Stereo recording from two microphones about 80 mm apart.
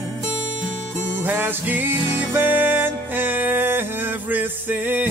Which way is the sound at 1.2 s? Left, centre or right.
Right.